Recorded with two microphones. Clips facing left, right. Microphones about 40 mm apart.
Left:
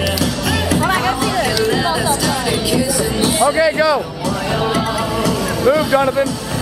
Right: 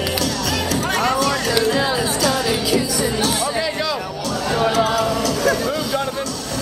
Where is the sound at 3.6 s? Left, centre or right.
Centre.